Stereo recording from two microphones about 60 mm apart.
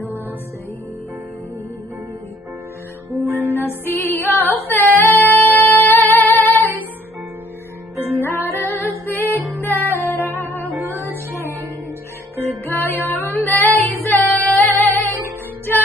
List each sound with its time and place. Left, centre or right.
3.5 s music: left
8.2 s music: left
10.7 s music: right
12.4 s music: left